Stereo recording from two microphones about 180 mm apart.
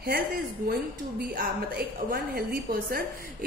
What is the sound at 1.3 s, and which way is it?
A woman's voice, 55° right (ahead or behind).